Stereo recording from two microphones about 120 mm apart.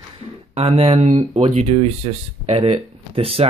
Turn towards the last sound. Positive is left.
turn(degrees=-55)  # may be behind; listen again after turning